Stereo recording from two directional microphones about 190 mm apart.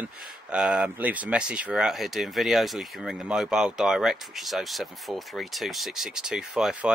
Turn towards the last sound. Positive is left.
turn(degrees=-5)  # may be behind; listen again after turning